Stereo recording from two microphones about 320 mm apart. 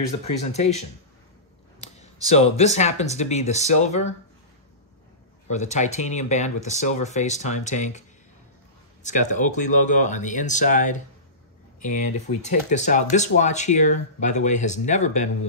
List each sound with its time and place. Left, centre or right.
0.2 s speech: left
2.3 s speech: centre
5.5 s speech: left
9.0 s speech: left